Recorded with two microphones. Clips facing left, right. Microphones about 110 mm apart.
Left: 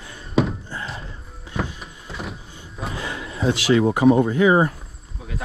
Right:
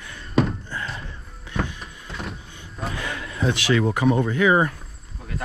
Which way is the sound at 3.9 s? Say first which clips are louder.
Left 5 dB; 25° left (ahead or behind).